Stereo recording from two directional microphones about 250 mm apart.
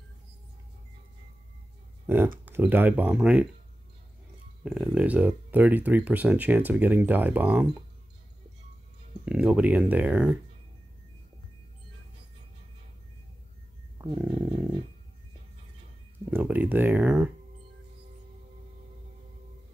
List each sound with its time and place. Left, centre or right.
2.0 s speech: centre
4.6 s speech: centre
9.2 s speech: centre
14.0 s roaring cats: centre
14.5 s dog: centre
16.3 s speech: centre